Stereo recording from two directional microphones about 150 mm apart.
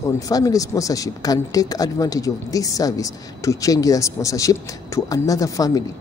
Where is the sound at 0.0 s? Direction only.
25° left (ahead or behind).